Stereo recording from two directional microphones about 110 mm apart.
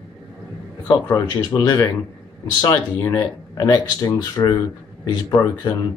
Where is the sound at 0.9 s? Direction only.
35° left (ahead or behind).